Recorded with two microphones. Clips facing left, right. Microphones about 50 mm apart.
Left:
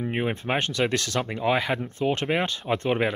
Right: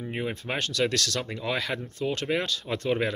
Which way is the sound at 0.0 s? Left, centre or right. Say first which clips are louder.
Left 5 dB; left.